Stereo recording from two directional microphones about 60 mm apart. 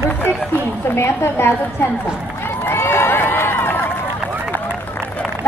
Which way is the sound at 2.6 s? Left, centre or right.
Left.